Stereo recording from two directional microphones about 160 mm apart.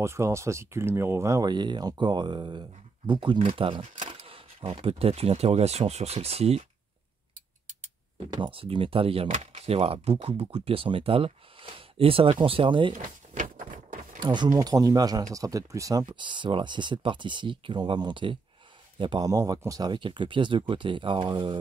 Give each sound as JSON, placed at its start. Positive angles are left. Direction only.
{"t": 0.0, "sound": "speech", "side_deg": -15}
{"t": 8.3, "sound": "speech", "side_deg": -30}
{"t": 12.9, "sound": "a sound", "side_deg": -55}
{"t": 14.2, "sound": "speech", "side_deg": -30}